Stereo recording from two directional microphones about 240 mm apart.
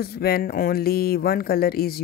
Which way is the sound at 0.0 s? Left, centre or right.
Left.